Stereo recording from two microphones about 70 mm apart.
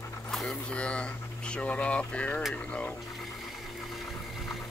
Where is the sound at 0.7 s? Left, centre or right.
Centre.